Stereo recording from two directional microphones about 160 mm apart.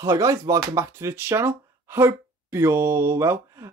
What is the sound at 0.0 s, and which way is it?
Speech, 20° right (ahead or behind).